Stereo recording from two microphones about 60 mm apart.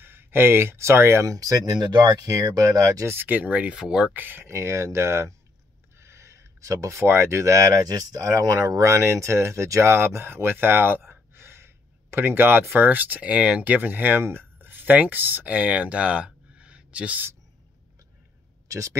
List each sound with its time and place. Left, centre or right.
0.0 s speech: right
1.3 s speech: right
2.2 s speech: right
3.1 s speech: right
3.7 s speech: centre
4.1 s speech: right
16.5 s a sound: centre
18.7 s speech: right